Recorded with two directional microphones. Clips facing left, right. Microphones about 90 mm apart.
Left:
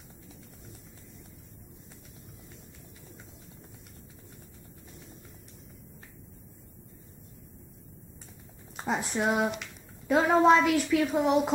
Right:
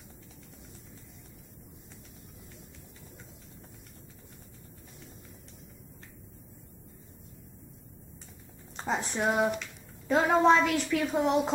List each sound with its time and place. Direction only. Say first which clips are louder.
8.7 s speech: left 1 dB; 5° left (ahead or behind)